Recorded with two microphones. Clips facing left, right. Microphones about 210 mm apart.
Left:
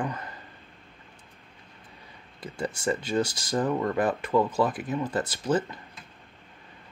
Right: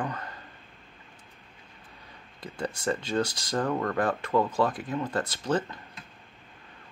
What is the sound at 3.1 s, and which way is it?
Speech, 15° left (ahead or behind).